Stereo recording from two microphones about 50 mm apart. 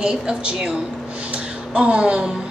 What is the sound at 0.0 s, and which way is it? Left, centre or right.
A woman's voice, centre.